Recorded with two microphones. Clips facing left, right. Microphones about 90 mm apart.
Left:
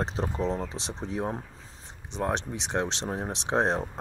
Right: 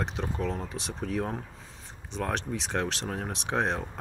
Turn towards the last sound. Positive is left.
turn(degrees=30)  # may be behind; listen again after turning